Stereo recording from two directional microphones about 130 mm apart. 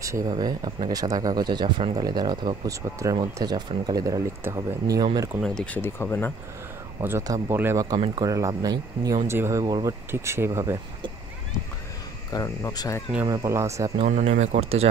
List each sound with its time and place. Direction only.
0.0 s speech: 25° right (ahead or behind)
5.4 s speech: 5° left (ahead or behind)
5.8 s speech: 15° left (ahead or behind)
7.0 s speech: 20° right (ahead or behind)
12.3 s speech: 30° left (ahead or behind)
13.2 s speech: 25° right (ahead or behind)
14.0 s speech: 60° right (ahead or behind)